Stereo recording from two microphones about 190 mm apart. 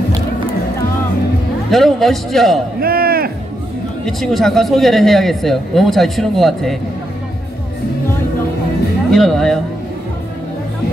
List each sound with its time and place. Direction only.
1.7 s a man's voice: centre (ahead or behind)
2.8 s a sound: 50° right (ahead or behind)
4.0 s a man's voice: centre (ahead or behind)
9.1 s a man's voice: centre (ahead or behind)